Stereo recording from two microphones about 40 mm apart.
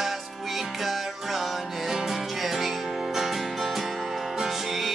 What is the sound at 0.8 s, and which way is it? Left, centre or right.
Music, centre.